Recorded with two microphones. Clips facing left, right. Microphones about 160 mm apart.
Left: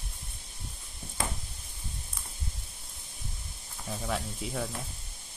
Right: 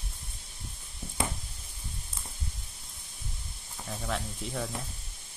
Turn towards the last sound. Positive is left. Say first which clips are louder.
# left 1 dB
turn(degrees=5)  # may be behind; listen again after turning